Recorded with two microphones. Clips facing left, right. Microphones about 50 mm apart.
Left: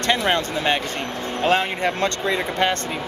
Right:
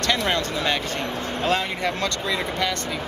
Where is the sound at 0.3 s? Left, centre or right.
Left.